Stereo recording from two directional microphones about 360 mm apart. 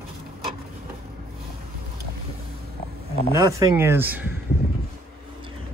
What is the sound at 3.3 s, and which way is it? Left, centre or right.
Speech, centre.